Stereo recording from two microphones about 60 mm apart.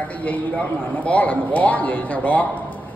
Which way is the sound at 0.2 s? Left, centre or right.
Left.